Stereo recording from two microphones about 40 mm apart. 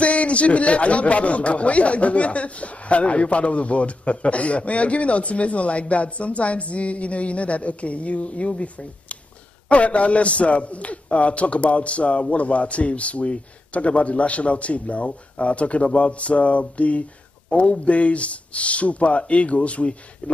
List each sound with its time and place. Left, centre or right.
0.0 s speech: left
9.7 s speech: left